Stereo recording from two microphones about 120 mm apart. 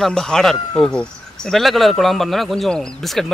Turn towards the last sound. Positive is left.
turn(degrees=5)  # may be behind; listen again after turning